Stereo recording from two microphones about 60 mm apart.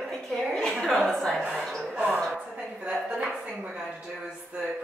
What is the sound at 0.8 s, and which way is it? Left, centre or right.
A woman's voice, centre.